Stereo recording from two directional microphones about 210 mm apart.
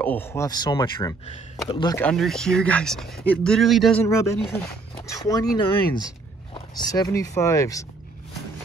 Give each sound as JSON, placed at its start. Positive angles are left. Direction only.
{"t": 0.0, "sound": "speech", "side_deg": 10}
{"t": 2.0, "sound": "speech", "side_deg": 5}
{"t": 4.0, "sound": "speech", "side_deg": 15}